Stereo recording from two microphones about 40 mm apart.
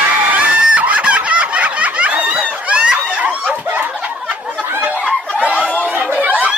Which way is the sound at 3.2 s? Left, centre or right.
Right.